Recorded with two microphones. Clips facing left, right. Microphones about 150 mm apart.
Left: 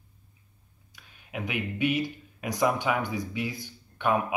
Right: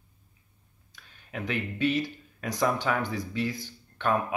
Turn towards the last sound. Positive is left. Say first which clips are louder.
# left 1 dB
turn(degrees=10)  # may be behind; listen again after turning